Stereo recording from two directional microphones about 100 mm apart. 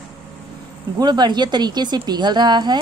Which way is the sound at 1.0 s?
45° right (ahead or behind).